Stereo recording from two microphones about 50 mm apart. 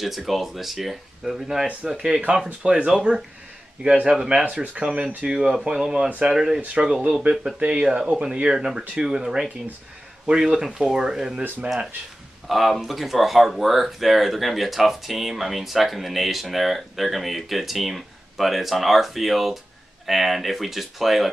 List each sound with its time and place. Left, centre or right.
0.0 s speech: centre
3.1 s speech: right
4.1 s speech: centre
11.6 s speech: right
12.4 s speech: centre